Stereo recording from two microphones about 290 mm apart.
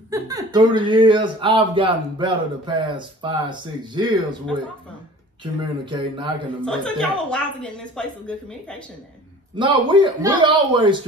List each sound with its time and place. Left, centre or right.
0.1 s speech: centre
5.4 s speech: centre
6.6 s a woman's voice: centre
9.6 s speech: centre